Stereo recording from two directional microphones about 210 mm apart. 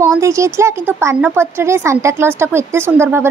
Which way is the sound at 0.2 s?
15° right (ahead or behind).